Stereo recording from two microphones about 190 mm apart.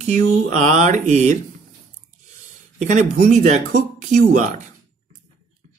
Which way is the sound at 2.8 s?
40° right (ahead or behind).